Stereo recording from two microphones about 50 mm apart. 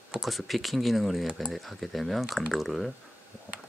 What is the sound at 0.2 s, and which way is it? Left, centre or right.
Speech, centre.